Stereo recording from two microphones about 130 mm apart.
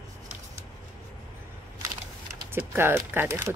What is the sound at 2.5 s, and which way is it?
Speech, 15° right (ahead or behind).